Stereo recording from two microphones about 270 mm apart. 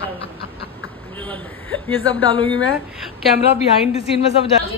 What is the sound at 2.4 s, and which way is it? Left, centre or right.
Speech, left.